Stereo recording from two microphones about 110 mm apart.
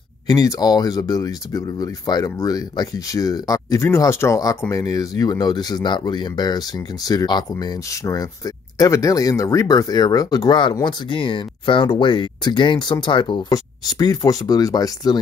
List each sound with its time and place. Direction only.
0.3 s speech: 35° left (ahead or behind)